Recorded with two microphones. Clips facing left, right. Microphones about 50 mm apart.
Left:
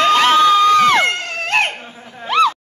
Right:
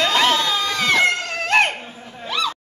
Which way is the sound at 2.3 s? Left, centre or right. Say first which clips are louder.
Left 10 dB; left.